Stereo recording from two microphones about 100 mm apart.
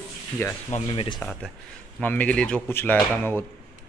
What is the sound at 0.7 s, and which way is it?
Speech, 65° left (ahead or behind).